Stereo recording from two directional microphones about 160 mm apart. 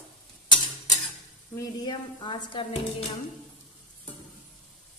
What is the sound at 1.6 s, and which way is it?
Speech, 30° left (ahead or behind).